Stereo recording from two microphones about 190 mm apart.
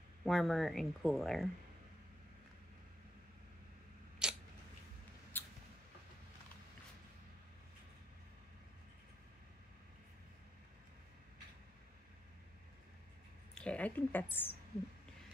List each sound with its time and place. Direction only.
0.2 s speech: centre (ahead or behind)
4.2 s biting: 5° right (ahead or behind)
5.3 s rodents: 10° left (ahead or behind)
13.6 s speech: 5° left (ahead or behind)